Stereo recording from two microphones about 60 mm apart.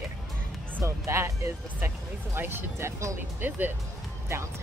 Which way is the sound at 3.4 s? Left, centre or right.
Right.